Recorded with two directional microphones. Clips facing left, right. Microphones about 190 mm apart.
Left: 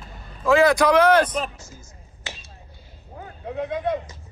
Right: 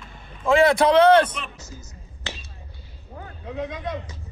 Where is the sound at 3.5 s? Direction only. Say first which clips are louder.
Left 4 dB; 55° left (ahead or behind).